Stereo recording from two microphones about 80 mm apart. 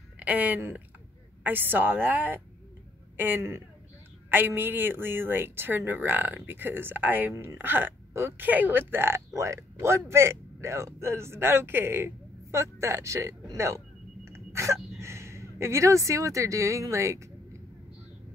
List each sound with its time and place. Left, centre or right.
0.2 s a woman's voice: centre
8.5 s speech: right